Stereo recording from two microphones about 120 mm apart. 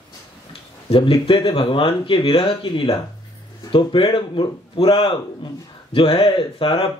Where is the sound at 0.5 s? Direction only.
50° left (ahead or behind).